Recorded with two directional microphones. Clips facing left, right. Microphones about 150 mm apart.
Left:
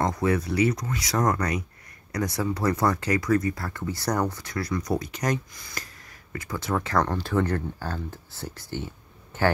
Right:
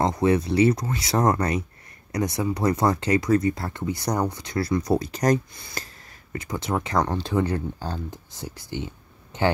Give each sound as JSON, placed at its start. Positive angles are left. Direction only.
{"t": 0.0, "sound": "speech", "side_deg": -20}
{"t": 4.6, "sound": "speech", "side_deg": -30}